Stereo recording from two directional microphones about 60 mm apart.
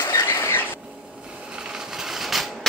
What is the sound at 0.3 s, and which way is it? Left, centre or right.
Vehicle, left.